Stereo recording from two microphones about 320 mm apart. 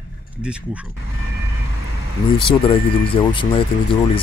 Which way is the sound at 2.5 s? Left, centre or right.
Centre.